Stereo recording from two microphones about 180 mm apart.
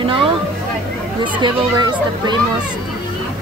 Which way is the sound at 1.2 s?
25° right (ahead or behind).